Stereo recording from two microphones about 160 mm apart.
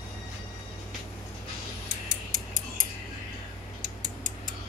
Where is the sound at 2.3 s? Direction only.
55° right (ahead or behind).